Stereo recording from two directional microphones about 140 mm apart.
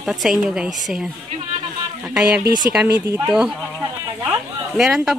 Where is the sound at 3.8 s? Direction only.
15° right (ahead or behind).